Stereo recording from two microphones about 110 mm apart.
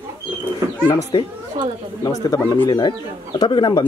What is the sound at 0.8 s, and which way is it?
Speech, 45° left (ahead or behind).